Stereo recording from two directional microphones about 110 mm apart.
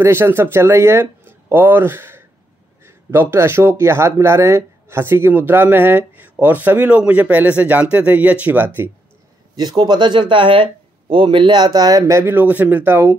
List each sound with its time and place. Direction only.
0.0 s speech: 20° right (ahead or behind)
9.6 s speech: 40° right (ahead or behind)
12.4 s speech: 15° right (ahead or behind)